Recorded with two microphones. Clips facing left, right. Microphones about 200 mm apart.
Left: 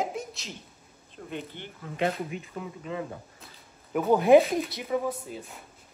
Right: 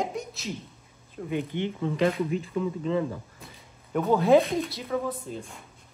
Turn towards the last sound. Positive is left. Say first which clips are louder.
# right 2 dB
turn(degrees=5)  # may be behind; listen again after turning